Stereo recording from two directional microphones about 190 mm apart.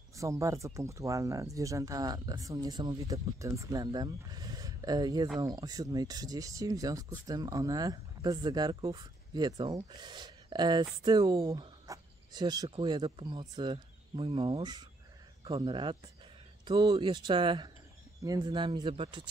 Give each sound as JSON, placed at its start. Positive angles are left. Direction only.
{"t": 0.1, "sound": "speech", "side_deg": -15}